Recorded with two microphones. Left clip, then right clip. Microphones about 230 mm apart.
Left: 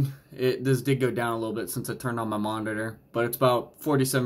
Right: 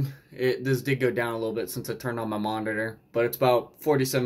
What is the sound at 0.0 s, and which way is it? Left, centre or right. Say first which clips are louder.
Speech: even; centre.